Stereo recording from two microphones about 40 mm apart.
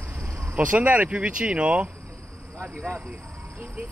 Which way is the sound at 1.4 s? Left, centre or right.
Right.